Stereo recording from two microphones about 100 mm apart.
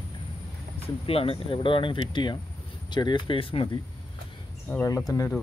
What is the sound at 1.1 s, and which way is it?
Speech, 70° left (ahead or behind).